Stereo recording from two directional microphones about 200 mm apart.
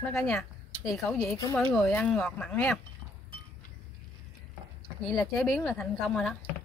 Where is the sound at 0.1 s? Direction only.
Centre (ahead or behind).